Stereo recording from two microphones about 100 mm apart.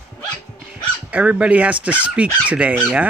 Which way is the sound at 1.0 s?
15° right (ahead or behind).